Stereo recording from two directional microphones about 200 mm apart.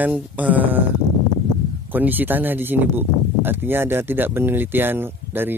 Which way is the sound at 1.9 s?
10° right (ahead or behind).